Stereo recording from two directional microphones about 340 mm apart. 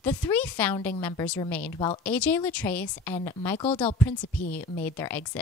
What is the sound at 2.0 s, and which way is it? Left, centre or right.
Speech, centre.